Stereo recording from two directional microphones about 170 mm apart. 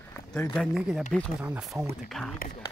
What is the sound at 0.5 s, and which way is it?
Speech, centre (ahead or behind).